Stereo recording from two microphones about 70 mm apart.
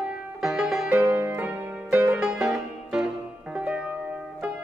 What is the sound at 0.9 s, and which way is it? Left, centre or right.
Music, right.